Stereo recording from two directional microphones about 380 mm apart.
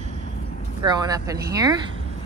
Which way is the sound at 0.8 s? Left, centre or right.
Centre.